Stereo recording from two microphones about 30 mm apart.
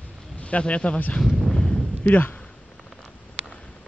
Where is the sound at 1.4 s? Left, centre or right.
Left.